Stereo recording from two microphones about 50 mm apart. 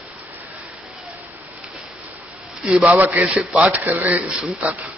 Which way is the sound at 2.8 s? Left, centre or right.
Right.